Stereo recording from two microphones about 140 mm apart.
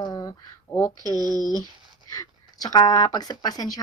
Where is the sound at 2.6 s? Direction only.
25° left (ahead or behind).